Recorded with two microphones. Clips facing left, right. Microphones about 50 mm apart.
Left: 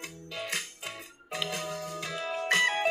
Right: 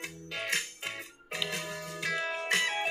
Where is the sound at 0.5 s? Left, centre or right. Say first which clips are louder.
Right 2 dB; centre.